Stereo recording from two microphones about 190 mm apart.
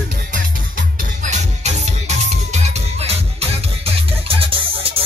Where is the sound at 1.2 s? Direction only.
40° right (ahead or behind).